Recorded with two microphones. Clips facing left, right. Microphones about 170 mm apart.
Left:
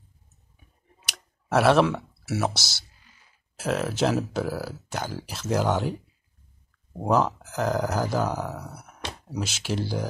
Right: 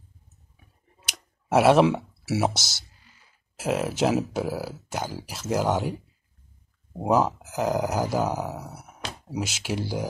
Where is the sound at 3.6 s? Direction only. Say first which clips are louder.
Right 1 dB; 10° right (ahead or behind).